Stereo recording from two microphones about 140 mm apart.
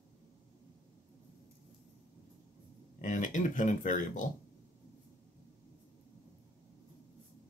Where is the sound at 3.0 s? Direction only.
65° left (ahead or behind).